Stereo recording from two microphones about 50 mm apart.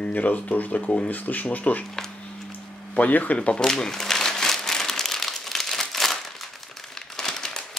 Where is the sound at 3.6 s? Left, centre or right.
Centre.